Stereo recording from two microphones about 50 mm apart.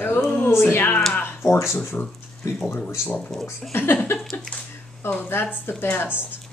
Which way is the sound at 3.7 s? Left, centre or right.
Left.